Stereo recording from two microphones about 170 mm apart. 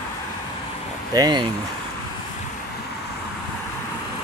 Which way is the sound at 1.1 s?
25° right (ahead or behind).